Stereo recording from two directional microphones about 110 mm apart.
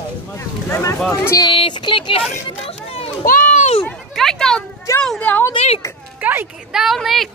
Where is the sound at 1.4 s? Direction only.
50° left (ahead or behind).